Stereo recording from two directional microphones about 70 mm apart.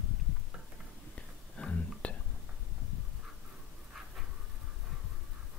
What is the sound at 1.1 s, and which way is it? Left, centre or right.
Whispering, centre.